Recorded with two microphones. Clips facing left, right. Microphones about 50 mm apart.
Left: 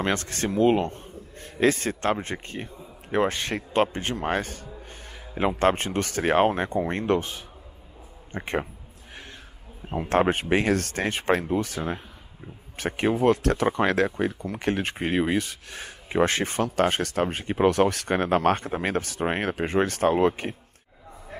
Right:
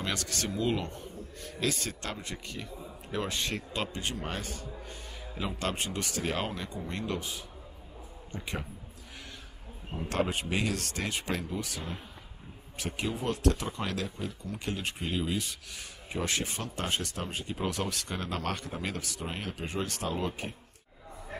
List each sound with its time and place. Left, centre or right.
0.0 s a man's voice: left
9.9 s speech: left